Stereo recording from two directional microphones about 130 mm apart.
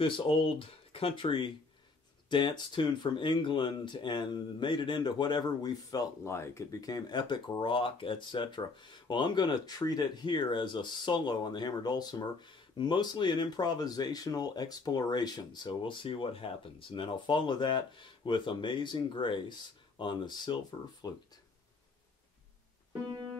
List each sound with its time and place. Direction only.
0.0 s speech: 40° left (ahead or behind)